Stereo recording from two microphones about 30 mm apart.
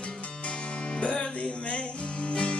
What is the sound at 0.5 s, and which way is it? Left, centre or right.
Music, left.